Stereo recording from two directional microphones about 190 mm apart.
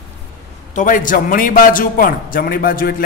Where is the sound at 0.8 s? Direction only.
45° left (ahead or behind).